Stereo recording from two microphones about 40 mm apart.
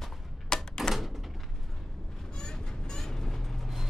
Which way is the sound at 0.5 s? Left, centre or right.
Centre.